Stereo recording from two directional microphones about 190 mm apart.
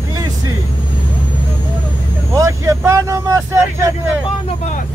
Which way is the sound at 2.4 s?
15° right (ahead or behind).